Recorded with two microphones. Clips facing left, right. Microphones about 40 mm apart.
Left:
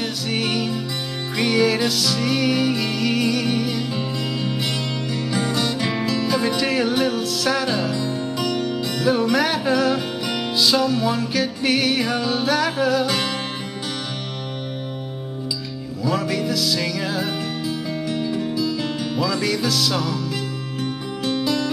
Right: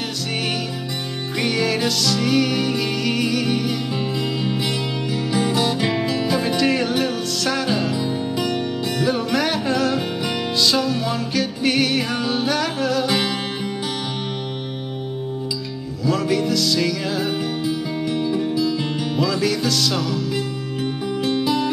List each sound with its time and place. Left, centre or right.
1.4 s music: centre
9.0 s music: centre
10.5 s music: centre
16.0 s music: centre
21.2 s music: centre